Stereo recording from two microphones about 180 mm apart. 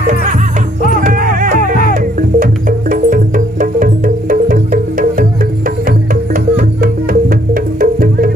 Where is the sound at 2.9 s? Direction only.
50° right (ahead or behind).